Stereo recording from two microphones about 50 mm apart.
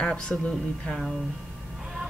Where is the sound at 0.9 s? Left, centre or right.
Centre.